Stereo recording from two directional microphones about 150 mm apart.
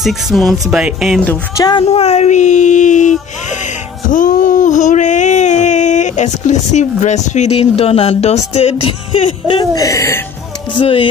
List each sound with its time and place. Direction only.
0.0 s speech: centre (ahead or behind)
1.6 s speech: 30° left (ahead or behind)
1.9 s a sound: 45° left (ahead or behind)
9.8 s speech: 20° left (ahead or behind)
10.8 s speech: 35° left (ahead or behind)